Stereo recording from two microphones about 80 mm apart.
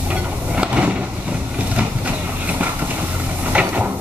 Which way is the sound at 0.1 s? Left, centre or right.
Centre.